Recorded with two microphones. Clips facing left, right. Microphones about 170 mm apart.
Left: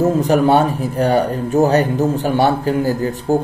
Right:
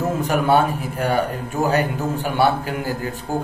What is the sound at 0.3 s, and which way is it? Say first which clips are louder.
Speech: left 2 dB; 40° left (ahead or behind).